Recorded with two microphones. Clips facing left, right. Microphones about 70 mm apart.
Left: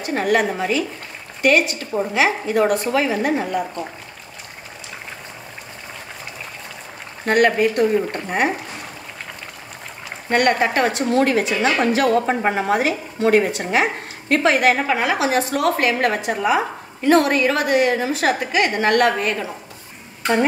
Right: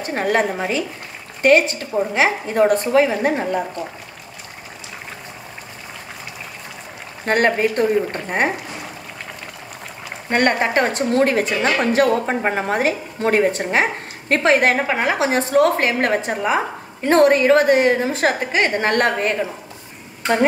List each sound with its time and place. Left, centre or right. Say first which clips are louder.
0.0 s a woman's voice: even; right
7.2 s a woman's voice: left 1 dB; right
10.3 s a woman's voice: even; right